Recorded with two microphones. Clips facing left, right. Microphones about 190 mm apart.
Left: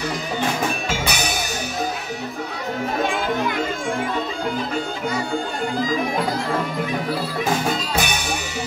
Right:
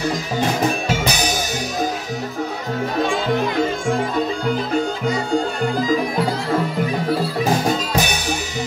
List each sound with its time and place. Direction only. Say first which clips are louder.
7.4 s music: right 2 dB; 40° right (ahead or behind)